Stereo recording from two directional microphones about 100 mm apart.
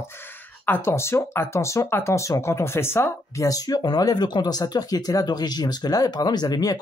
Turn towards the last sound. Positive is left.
turn(degrees=40)  # may be behind; listen again after turning